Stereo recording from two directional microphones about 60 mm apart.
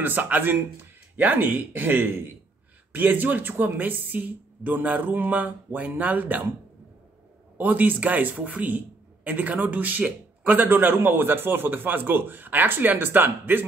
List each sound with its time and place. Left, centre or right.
0.0 s a man's voice: right
7.5 s a man's voice: right